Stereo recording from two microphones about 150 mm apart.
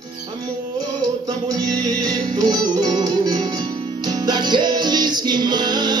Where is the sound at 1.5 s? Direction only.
25° right (ahead or behind).